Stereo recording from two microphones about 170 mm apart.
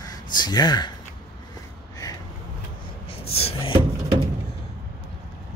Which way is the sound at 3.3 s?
35° left (ahead or behind).